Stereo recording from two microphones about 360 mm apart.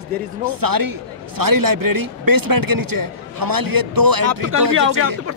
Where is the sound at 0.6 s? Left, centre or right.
Right.